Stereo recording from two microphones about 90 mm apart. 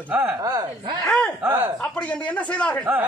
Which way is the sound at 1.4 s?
20° right (ahead or behind).